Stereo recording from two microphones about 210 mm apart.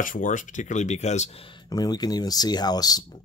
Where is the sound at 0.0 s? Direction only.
40° left (ahead or behind).